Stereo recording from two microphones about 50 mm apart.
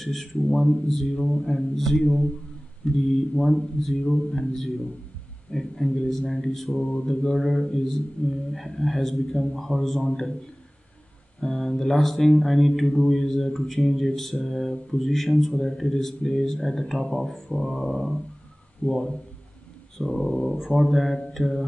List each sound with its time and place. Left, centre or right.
0.0 s a man's voice: centre
11.4 s speech: centre
18.8 s a man's voice: left
20.1 s speech: centre